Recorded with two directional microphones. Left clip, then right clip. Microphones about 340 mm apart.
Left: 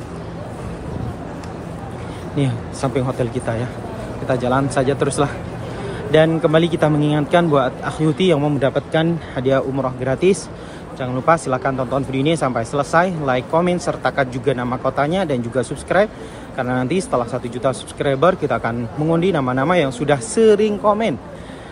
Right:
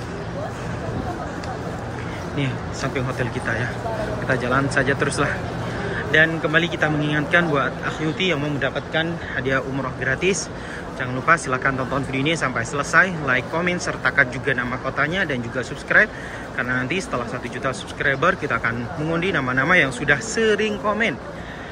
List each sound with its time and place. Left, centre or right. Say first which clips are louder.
2.3 s a man's voice: left 5 dB; centre